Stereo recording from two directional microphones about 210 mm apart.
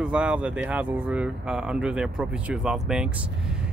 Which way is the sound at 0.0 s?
5° right (ahead or behind).